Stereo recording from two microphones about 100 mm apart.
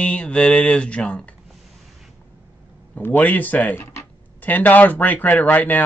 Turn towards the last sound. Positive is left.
turn(degrees=15)  # may be behind; listen again after turning